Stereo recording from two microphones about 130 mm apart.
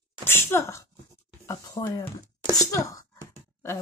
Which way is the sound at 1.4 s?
30° left (ahead or behind).